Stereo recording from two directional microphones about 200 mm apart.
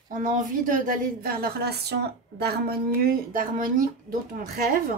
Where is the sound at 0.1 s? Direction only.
40° right (ahead or behind).